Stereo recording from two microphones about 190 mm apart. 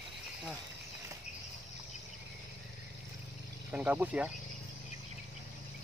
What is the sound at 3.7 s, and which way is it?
Speech, 10° right (ahead or behind).